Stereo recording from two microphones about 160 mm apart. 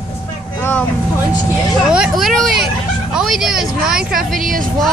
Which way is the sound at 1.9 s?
5° right (ahead or behind).